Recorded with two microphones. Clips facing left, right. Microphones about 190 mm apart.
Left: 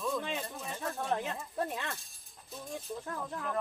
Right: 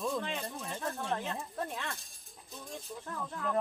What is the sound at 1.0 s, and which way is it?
Speech, 5° left (ahead or behind).